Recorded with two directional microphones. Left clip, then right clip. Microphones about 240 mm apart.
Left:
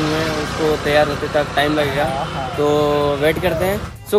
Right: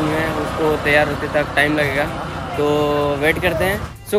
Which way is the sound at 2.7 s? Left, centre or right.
Centre.